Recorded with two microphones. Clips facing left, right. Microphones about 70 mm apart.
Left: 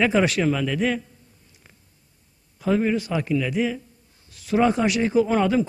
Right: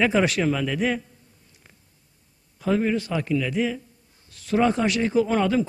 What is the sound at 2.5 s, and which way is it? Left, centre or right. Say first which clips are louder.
A man's voice: left 1 dB; centre.